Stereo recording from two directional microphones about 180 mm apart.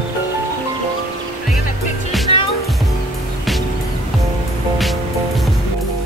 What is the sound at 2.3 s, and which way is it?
Music, 35° left (ahead or behind).